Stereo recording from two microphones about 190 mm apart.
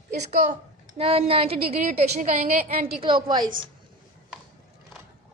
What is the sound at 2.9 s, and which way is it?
Speech, 25° right (ahead or behind).